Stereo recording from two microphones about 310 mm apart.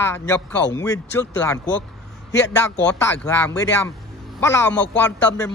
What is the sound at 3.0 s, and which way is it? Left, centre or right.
A man's voice, centre.